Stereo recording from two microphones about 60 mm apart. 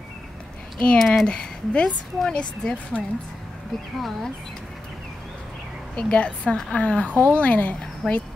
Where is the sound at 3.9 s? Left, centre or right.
Centre.